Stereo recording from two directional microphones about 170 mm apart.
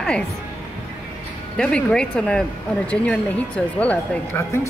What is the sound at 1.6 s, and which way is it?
Speech, 5° left (ahead or behind).